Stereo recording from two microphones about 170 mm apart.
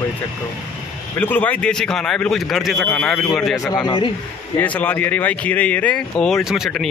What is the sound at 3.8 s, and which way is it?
Speech, 30° left (ahead or behind).